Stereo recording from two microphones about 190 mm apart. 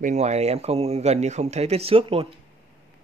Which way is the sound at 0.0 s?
35° right (ahead or behind).